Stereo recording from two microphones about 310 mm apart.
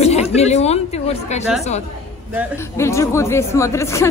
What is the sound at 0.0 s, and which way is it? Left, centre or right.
Chatter, left.